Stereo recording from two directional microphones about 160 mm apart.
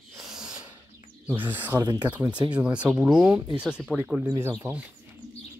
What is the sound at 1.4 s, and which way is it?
Speech, 10° right (ahead or behind).